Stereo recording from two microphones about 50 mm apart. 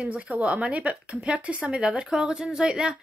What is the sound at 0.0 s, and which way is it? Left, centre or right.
Speech, right.